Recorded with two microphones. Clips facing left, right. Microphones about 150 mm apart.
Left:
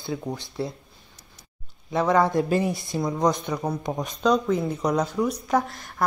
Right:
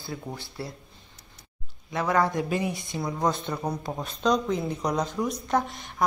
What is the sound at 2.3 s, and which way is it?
Speech, 35° left (ahead or behind).